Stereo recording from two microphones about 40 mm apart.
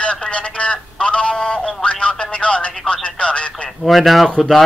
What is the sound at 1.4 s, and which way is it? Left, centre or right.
Music, left.